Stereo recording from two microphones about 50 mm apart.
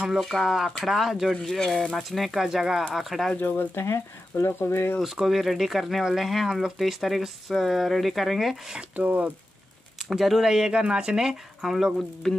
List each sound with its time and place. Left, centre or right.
0.3 s speech: centre
1.3 s speech: centre
1.8 s speech: centre
2.0 s speech: centre
3.3 s speech: left
3.8 s speech: left
5.0 s speech: centre
8.7 s speech: right
10.0 s speech: centre